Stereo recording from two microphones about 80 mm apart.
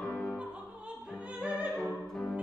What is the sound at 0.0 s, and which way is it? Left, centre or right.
Music, centre.